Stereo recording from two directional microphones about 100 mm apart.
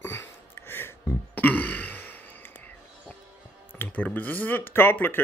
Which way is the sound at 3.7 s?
15° left (ahead or behind).